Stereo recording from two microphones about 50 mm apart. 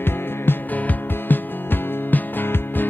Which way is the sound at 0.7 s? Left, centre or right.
Left.